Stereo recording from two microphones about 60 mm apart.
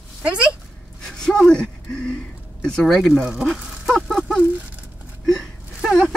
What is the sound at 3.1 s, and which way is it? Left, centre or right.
Speech, centre.